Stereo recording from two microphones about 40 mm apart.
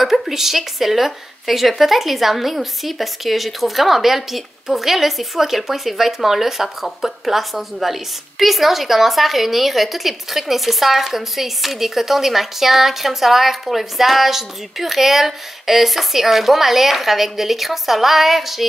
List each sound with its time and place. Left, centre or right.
0.0 s speech: centre